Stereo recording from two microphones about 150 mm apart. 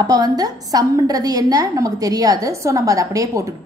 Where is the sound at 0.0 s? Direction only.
25° right (ahead or behind).